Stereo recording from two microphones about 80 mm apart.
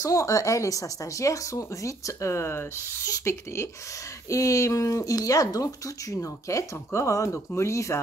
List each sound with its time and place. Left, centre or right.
0.0 s speech: left